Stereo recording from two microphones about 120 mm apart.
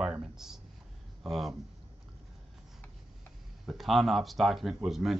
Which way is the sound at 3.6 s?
Centre (ahead or behind).